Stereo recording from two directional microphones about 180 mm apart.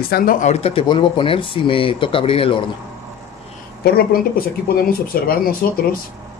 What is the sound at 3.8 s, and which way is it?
Speech, 55° left (ahead or behind).